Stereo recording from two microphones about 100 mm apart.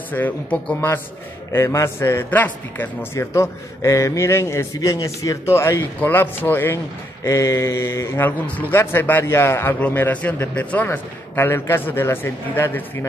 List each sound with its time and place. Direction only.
0.1 s speech: 15° left (ahead or behind)
1.5 s a man's voice: 30° left (ahead or behind)
3.2 s a man's voice: 30° left (ahead or behind)
7.2 s a man's voice: 30° left (ahead or behind)